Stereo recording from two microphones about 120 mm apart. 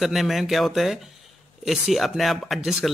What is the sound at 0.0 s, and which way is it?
Speech, centre (ahead or behind).